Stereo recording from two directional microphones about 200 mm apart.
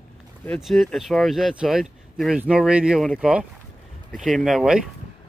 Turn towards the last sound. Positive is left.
turn(degrees=-5)  # may be behind; listen again after turning